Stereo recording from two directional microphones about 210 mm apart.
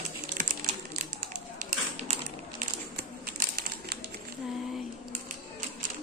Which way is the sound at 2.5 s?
45° right (ahead or behind).